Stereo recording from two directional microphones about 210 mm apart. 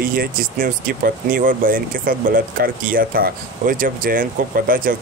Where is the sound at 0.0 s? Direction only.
45° right (ahead or behind).